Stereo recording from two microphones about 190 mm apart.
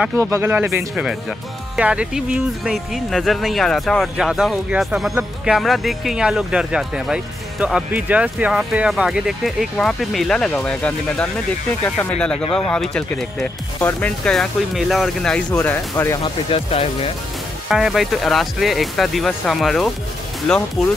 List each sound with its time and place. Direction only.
0.0 s speech: 15° right (ahead or behind); by 16.2 s 10° left (ahead or behind)
16.2 s speech: 30° left (ahead or behind)
17.6 s speech: centre (ahead or behind)